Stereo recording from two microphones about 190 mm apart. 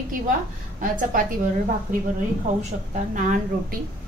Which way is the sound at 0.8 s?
45° right (ahead or behind).